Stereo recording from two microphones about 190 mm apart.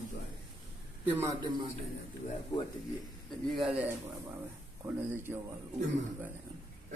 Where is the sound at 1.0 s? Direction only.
15° right (ahead or behind).